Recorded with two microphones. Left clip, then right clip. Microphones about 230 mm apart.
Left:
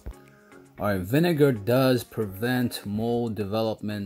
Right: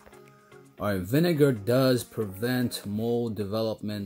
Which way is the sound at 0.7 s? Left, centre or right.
Centre.